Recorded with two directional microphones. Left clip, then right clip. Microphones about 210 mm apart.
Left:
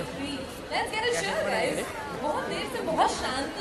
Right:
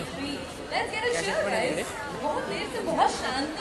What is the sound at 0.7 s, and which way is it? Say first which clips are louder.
Speech: even; 45° left (ahead or behind).